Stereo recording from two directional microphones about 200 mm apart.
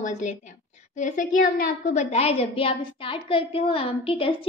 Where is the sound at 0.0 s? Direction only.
35° left (ahead or behind).